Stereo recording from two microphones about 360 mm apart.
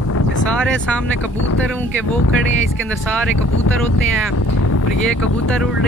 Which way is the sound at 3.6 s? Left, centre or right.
Left.